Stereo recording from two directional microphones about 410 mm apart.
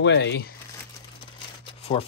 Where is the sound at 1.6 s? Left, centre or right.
Centre.